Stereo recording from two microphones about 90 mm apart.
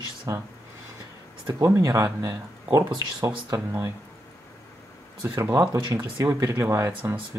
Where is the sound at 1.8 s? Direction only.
35° right (ahead or behind).